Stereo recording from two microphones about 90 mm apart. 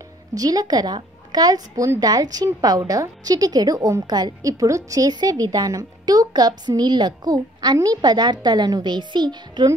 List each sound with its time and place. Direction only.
0.3 s a woman's voice: 45° right (ahead or behind)